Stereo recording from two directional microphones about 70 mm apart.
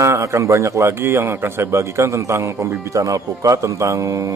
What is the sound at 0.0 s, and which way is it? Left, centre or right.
A man's voice, right.